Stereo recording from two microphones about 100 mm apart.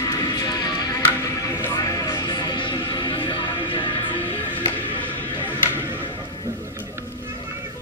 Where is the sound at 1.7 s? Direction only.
35° left (ahead or behind).